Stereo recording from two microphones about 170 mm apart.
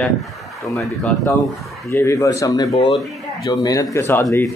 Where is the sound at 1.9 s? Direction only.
15° left (ahead or behind).